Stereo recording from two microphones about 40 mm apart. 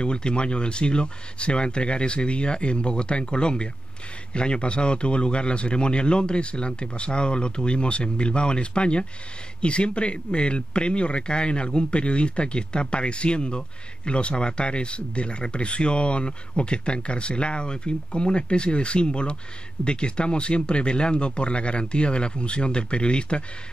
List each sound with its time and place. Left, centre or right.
0.0 s speech: left